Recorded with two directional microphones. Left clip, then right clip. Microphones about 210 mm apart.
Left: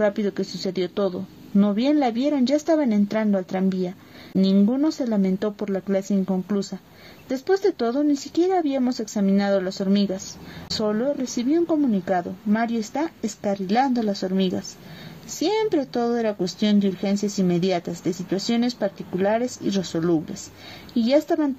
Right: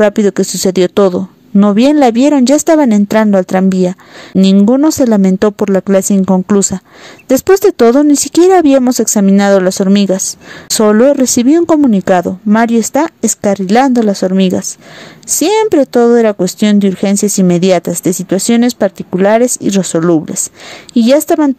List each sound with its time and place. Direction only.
0.0 s speech: 45° right (ahead or behind)